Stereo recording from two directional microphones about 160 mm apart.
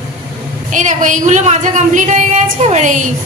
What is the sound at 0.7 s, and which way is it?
A woman's voice, 50° right (ahead or behind).